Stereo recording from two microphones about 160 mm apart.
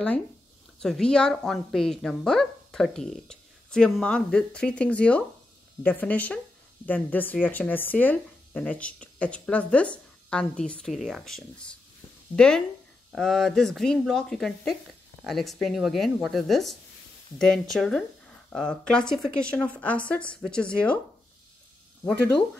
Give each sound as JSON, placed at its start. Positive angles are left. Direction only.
{"t": 0.7, "sound": "speech", "side_deg": 5}
{"t": 22.0, "sound": "speech", "side_deg": 5}